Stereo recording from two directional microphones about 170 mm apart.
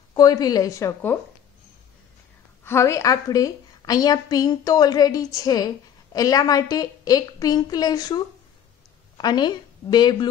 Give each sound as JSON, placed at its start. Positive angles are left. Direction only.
{"t": 0.1, "sound": "a woman's voice", "side_deg": 20}
{"t": 2.6, "sound": "a woman's voice", "side_deg": 15}
{"t": 9.2, "sound": "a woman's voice", "side_deg": 25}